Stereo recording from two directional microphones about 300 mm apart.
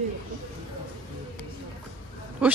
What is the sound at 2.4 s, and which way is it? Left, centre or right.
Speech, centre.